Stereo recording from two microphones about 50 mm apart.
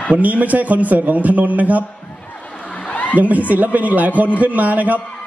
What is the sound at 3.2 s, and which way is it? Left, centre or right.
A man's voice, right.